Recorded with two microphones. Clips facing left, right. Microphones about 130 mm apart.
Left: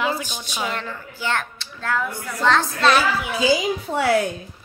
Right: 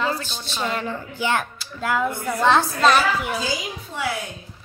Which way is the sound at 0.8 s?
20° right (ahead or behind).